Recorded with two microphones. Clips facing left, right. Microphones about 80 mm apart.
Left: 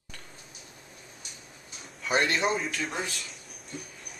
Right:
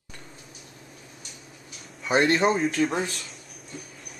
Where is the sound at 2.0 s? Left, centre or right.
Right.